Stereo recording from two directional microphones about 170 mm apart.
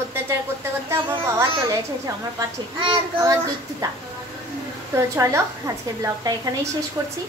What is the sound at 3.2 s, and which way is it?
Speech, 15° right (ahead or behind).